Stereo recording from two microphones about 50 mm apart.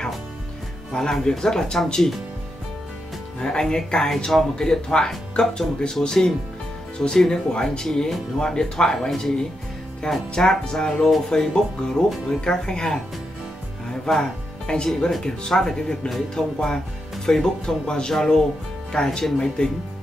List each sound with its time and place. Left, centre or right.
0.9 s speech: centre
3.3 s speech: centre
14.1 s speech: centre